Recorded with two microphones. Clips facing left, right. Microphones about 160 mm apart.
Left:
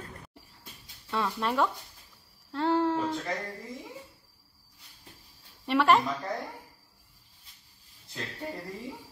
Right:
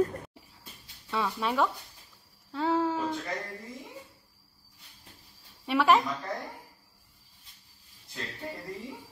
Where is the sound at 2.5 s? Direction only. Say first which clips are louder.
Left 1 dB; centre (ahead or behind).